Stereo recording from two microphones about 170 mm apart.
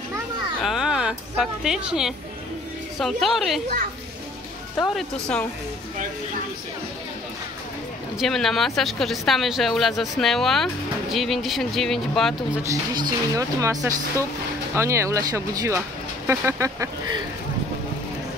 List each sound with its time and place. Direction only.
0.6 s a sound: centre (ahead or behind)
3.0 s speech: centre (ahead or behind)
4.9 s speech: 5° left (ahead or behind)
8.2 s speech: centre (ahead or behind)
12.6 s speech: 20° right (ahead or behind)